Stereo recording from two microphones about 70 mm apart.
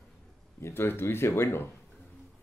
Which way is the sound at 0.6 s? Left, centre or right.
Left.